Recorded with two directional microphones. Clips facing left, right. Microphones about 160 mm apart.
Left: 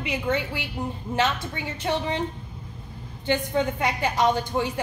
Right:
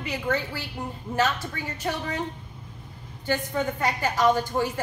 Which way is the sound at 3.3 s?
20° left (ahead or behind).